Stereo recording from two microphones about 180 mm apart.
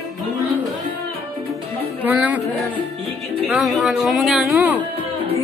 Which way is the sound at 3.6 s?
Centre (ahead or behind).